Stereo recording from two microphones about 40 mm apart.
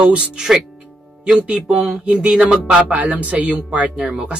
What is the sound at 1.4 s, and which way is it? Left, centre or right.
Speech, right.